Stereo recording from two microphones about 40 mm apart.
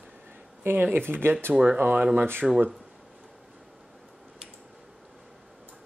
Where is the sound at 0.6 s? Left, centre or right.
Right.